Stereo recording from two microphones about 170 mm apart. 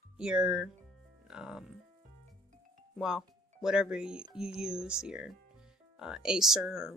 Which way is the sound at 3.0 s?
Centre (ahead or behind).